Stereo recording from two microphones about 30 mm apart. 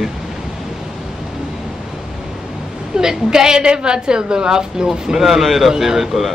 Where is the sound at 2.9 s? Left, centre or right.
Right.